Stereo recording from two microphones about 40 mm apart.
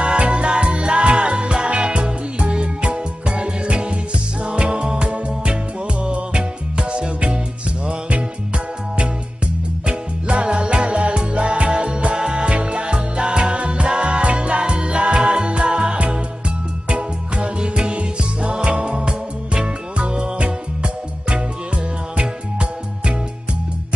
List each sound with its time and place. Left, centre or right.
0.0 s music: right
9.8 s music: right